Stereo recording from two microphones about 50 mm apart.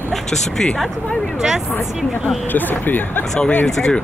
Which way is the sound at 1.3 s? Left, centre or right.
Centre.